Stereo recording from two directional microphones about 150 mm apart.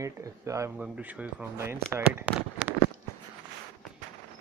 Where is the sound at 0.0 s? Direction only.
20° right (ahead or behind).